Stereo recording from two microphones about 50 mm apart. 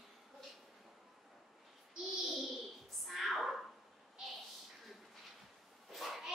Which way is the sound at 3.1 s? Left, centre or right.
Centre.